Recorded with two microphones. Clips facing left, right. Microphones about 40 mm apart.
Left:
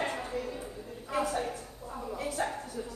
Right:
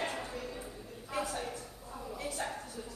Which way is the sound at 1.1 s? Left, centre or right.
Left.